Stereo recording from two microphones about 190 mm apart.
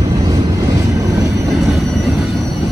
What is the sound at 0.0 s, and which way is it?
Vehicle, 20° right (ahead or behind).